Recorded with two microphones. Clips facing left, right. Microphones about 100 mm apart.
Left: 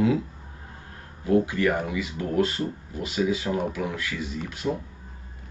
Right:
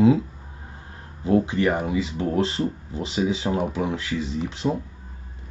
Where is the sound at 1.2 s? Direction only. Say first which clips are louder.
Right 1 dB; 25° right (ahead or behind).